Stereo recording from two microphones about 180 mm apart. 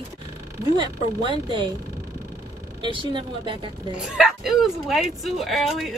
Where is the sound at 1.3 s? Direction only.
25° right (ahead or behind).